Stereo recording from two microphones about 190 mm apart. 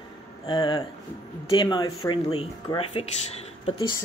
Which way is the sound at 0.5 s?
20° left (ahead or behind).